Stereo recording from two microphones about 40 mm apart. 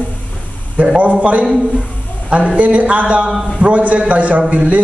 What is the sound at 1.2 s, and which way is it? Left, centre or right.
A man's voice, right.